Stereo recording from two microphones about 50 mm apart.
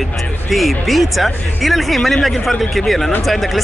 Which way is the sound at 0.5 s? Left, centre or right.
Centre.